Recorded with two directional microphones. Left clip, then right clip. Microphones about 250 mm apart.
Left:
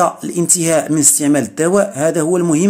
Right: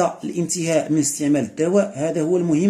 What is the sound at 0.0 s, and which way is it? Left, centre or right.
Speech, centre.